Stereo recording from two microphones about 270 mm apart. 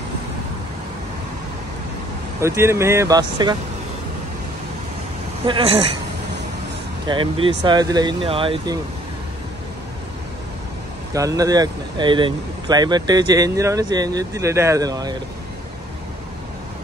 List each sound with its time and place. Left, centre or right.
2.4 s speech: centre
5.5 s a woman's voice: right
7.1 s speech: centre
11.1 s speech: centre